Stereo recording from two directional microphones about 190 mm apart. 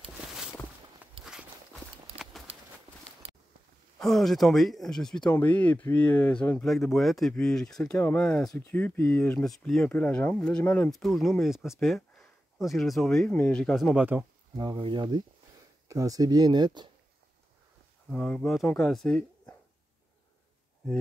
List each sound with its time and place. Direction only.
2.1 s a sound: 35° right (ahead or behind)
4.0 s speech: centre (ahead or behind)
14.6 s speech: 25° right (ahead or behind)
18.1 s speech: 5° left (ahead or behind)